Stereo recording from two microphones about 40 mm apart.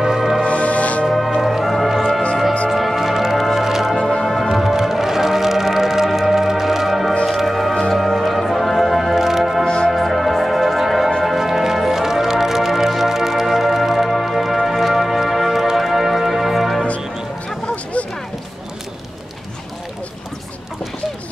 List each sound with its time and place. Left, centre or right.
0.0 s music: centre
0.5 s music: left
1.4 s music: centre
3.9 s music: centre
4.2 s music: centre